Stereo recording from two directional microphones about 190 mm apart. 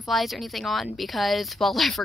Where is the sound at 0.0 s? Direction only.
Centre (ahead or behind).